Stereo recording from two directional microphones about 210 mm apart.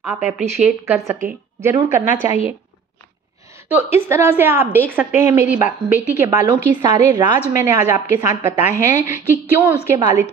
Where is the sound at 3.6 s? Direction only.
10° right (ahead or behind).